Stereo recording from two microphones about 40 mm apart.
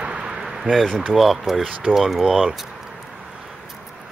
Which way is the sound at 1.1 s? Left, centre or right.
Centre.